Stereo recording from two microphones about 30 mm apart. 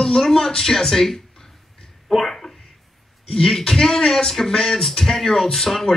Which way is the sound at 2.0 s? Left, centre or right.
Centre.